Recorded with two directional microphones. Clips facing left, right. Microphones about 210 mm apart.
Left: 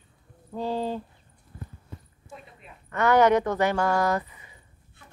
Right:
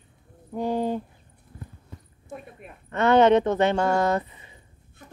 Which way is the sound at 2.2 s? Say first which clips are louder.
Right 7 dB; 55° right (ahead or behind).